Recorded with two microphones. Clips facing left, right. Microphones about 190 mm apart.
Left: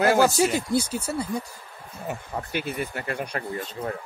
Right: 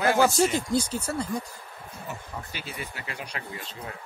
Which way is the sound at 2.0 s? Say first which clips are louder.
Left 7 dB; 55° left (ahead or behind).